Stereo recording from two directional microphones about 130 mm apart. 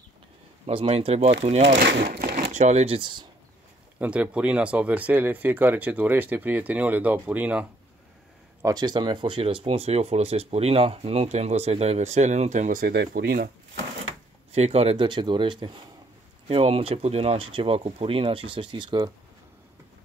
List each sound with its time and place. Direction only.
0.7 s speech: 50° right (ahead or behind)
2.2 s speech: 75° right (ahead or behind); by 3.3 s 40° right (ahead or behind)
4.0 s speech: 10° right (ahead or behind)
8.6 s speech: 30° right (ahead or behind); by 13.5 s 90° right
14.5 s speech: 55° right (ahead or behind)
15.0 s speech: 35° right (ahead or behind)
16.4 s speech: 50° right (ahead or behind)